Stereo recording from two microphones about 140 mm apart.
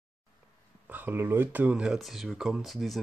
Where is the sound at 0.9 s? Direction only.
15° right (ahead or behind).